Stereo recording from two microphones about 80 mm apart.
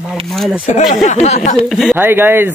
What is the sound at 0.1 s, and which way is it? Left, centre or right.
Speech, centre.